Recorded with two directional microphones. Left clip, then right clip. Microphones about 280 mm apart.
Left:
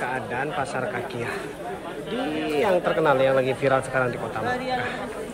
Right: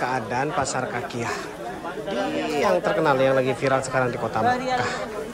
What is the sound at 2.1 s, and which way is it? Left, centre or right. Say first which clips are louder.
Speech: right 1 dB; right.